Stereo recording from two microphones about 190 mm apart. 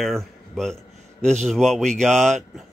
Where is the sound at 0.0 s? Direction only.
Centre (ahead or behind).